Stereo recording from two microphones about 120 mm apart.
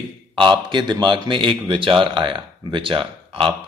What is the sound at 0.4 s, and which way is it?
A man's voice, 40° right (ahead or behind).